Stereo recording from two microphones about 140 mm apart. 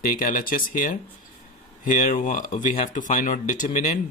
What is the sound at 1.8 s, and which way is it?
Speech, 65° left (ahead or behind).